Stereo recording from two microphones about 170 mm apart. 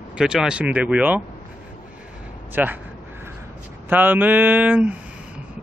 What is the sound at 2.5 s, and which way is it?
Speech, 10° right (ahead or behind).